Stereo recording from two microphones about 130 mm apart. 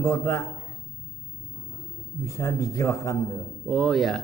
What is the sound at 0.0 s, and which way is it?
Speech, 20° left (ahead or behind).